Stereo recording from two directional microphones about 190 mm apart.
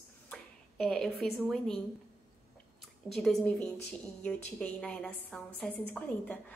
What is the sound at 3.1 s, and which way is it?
A woman's voice, centre (ahead or behind).